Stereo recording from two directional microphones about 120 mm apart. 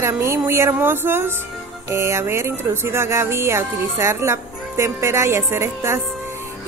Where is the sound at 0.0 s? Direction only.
20° right (ahead or behind).